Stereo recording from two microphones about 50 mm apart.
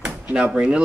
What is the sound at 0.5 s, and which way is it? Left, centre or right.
Speech, right.